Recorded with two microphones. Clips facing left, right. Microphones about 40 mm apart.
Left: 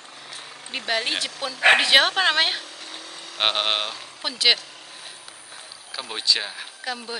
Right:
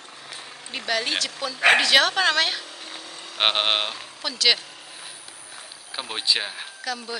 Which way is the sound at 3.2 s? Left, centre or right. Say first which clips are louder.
Right 1 dB; centre.